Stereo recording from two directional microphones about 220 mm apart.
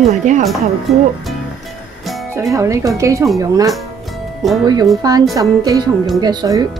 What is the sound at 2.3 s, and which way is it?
A woman's voice, 15° right (ahead or behind).